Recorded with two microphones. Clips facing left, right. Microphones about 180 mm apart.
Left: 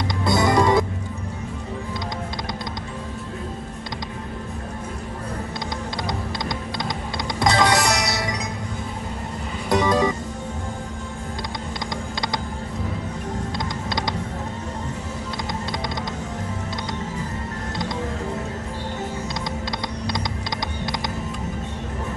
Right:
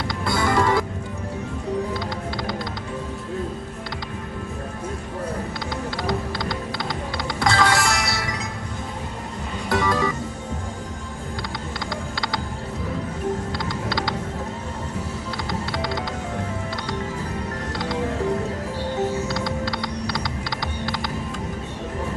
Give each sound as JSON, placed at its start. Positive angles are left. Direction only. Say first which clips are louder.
{"t": 0.2, "sound": "music", "louder": "left 3 dB", "side_deg": 20}
{"t": 7.3, "sound": "music", "louder": "left 2 dB", "side_deg": 20}
{"t": 9.7, "sound": "music", "louder": "left 3 dB", "side_deg": 20}
{"t": 13.6, "sound": "music", "louder": "right 1 dB", "side_deg": 20}
{"t": 19.2, "sound": "music", "louder": "right 3 dB", "side_deg": 20}